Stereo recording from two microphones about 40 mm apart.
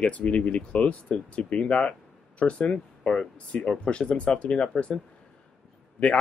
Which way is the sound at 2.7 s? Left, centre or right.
Centre.